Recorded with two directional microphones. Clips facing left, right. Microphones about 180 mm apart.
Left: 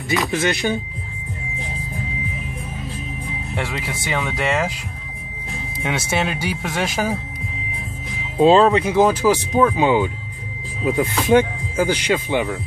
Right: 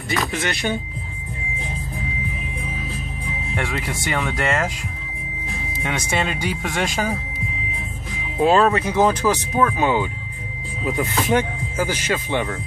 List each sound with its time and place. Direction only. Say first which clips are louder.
0.3 s speech: left 5 dB; 20° left (ahead or behind)
3.5 s speech: right 1 dB; 5° left (ahead or behind)
5.8 s speech: left 2 dB; 5° left (ahead or behind)
8.4 s speech: left 3 dB; 20° left (ahead or behind)
11.2 s speech: left 8 dB; 10° left (ahead or behind)